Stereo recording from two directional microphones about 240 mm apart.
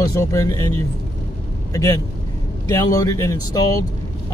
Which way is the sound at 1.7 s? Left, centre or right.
Centre.